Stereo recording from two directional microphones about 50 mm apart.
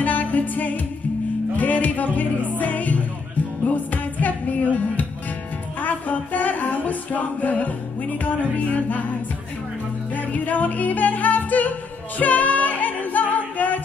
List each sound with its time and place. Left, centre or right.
0.0 s music: left
10.1 s music: left